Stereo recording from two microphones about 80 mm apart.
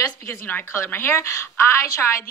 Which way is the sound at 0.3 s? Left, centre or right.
Left.